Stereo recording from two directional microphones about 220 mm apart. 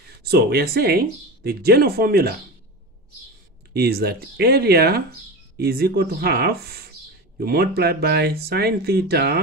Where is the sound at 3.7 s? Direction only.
45° right (ahead or behind).